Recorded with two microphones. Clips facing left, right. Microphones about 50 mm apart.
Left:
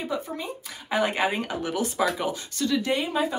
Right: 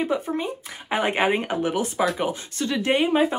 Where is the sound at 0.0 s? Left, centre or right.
Right.